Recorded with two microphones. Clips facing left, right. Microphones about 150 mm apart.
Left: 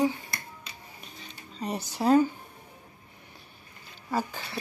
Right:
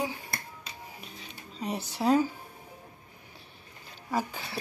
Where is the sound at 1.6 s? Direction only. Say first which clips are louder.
Left 1 dB; 40° left (ahead or behind).